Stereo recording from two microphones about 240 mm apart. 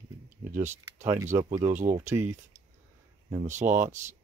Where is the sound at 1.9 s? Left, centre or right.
Centre.